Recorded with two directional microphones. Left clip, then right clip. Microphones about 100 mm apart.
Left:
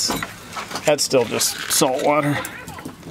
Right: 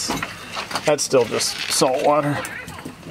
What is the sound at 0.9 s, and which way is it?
Speech, 10° left (ahead or behind).